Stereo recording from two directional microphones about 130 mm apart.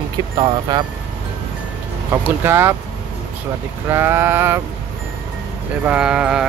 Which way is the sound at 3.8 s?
20° right (ahead or behind).